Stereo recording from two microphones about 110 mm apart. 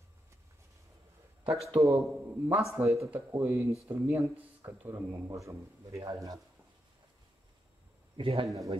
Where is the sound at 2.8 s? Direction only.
15° right (ahead or behind).